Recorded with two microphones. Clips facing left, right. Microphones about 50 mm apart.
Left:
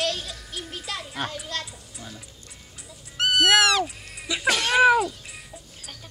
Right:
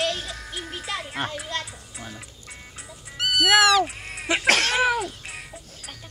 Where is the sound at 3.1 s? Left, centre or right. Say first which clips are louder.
Left 2 dB; centre.